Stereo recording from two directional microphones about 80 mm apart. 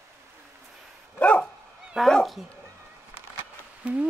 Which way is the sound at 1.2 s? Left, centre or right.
Centre.